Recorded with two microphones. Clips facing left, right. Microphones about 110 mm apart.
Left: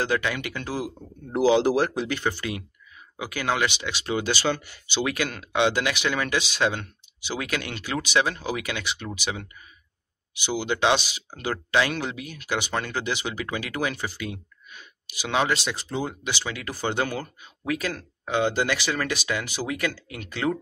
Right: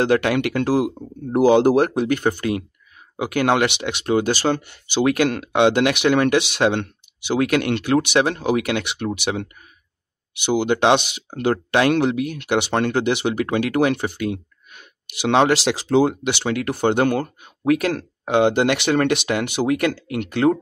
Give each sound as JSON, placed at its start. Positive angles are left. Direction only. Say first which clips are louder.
{"t": 0.0, "sound": "speech", "louder": "right 8 dB", "side_deg": -65}
{"t": 1.3, "sound": "speech", "louder": "right 6 dB", "side_deg": -50}